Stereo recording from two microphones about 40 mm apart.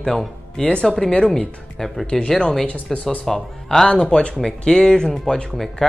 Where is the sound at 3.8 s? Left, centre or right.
Left.